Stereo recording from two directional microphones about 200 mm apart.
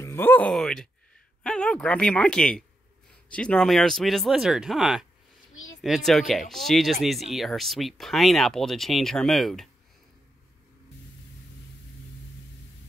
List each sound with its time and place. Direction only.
0.0 s speech: 10° left (ahead or behind)